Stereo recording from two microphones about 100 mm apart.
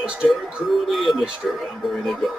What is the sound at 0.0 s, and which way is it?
A man's voice, 10° right (ahead or behind).